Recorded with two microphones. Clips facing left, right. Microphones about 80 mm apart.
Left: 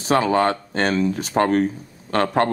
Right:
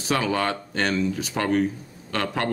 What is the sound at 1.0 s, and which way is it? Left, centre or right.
Speech, left.